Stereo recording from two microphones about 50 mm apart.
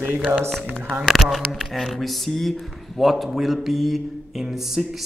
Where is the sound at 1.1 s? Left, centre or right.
Centre.